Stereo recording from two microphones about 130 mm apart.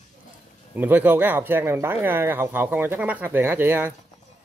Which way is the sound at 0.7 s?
15° right (ahead or behind).